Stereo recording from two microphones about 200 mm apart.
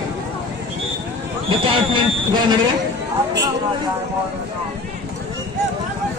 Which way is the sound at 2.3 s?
20° right (ahead or behind).